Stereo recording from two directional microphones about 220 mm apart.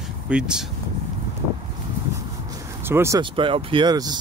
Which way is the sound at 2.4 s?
10° right (ahead or behind).